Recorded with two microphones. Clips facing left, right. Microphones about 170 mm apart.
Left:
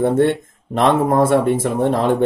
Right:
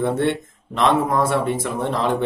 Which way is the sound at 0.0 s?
50° left (ahead or behind).